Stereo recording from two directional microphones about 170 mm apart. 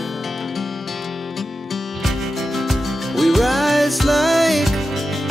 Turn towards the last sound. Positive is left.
turn(degrees=0)  # may be behind; listen again after turning